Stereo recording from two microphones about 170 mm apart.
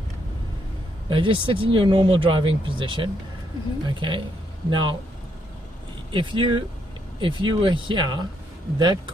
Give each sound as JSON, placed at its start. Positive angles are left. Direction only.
{"t": 1.0, "sound": "speech", "side_deg": -30}
{"t": 6.1, "sound": "speech", "side_deg": -30}